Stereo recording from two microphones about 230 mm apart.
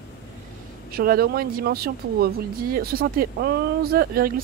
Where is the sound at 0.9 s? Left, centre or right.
Right.